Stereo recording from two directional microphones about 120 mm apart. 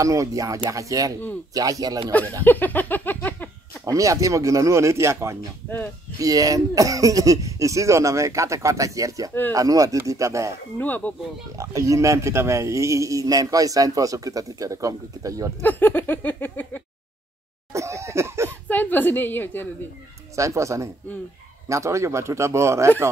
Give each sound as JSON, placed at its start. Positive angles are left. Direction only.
{"t": 0.0, "sound": "a man's voice", "side_deg": -25}
{"t": 2.4, "sound": "a sound", "side_deg": 15}
{"t": 3.8, "sound": "a man's voice", "side_deg": -25}
{"t": 10.8, "sound": "a sound", "side_deg": 15}
{"t": 11.5, "sound": "a man's voice", "side_deg": -25}
{"t": 15.6, "sound": "a sound", "side_deg": 15}
{"t": 17.7, "sound": "cough", "side_deg": -25}
{"t": 18.5, "sound": "a woman's voice", "side_deg": 15}
{"t": 20.3, "sound": "a man's voice", "side_deg": -25}